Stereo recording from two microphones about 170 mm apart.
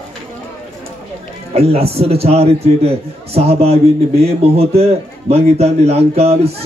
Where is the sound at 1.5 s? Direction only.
35° right (ahead or behind).